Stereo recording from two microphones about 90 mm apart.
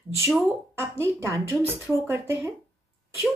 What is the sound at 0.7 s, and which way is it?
Speech, 30° right (ahead or behind).